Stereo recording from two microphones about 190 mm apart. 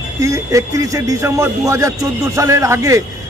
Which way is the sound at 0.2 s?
15° right (ahead or behind).